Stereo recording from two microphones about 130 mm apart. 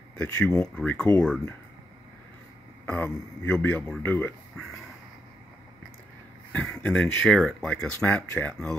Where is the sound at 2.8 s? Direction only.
15° left (ahead or behind).